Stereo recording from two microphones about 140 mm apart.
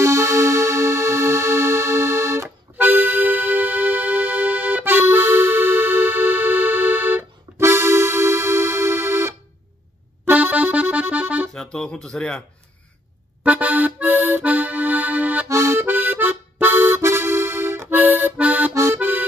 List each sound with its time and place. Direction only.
0.0 s music: 20° right (ahead or behind)
10.2 s accordion: 10° right (ahead or behind)
11.5 s speech: 5° left (ahead or behind)
13.4 s accordion: 10° right (ahead or behind)
15.4 s music: 20° right (ahead or behind)
18.7 s accordion: 20° right (ahead or behind)